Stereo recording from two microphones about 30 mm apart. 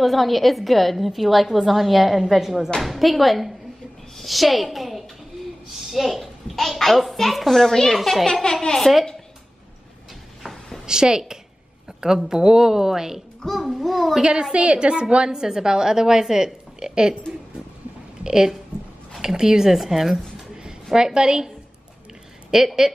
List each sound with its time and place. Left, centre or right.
0.0 s a woman's voice: centre
5.8 s a sound: centre
6.5 s a woman's voice: centre
7.7 s a child's voice: centre
8.0 s a woman's voice: centre
8.3 s speech: left
8.9 s a woman's voice: centre
10.9 s a woman's voice: right
13.5 s a woman's voice: centre
14.5 s a woman's voice: right; by 16.9 s centre
18.2 s a woman's voice: right; by 20.2 s centre
20.9 s a woman's voice: right
22.5 s a woman's voice: centre